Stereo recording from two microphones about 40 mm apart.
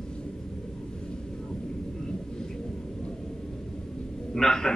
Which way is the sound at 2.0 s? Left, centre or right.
Centre.